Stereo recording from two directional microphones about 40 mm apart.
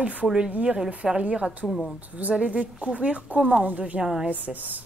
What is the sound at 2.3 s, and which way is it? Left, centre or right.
Speech, right.